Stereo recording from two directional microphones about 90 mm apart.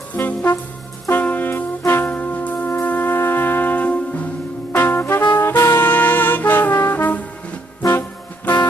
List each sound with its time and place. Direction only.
0.1 s music: 20° left (ahead or behind)
1.1 s brass instrument: 20° left (ahead or behind)
1.9 s music: 20° left (ahead or behind)
5.3 s brass instrument: 25° left (ahead or behind)